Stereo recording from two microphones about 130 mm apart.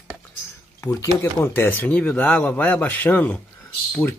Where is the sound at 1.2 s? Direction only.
15° left (ahead or behind).